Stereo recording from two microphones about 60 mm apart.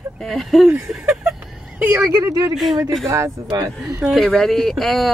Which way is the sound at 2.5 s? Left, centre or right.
Centre.